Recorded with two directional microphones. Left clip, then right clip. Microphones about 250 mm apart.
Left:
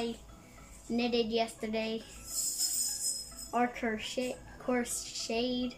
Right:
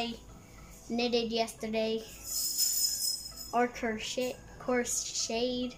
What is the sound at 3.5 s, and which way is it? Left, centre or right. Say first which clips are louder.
A woman's voice: right 1 dB; centre.